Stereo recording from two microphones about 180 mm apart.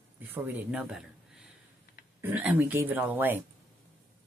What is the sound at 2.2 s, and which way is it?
Speech, 10° right (ahead or behind).